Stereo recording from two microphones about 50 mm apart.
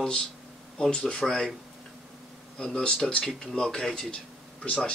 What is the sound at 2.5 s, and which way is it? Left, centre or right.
Speech, centre.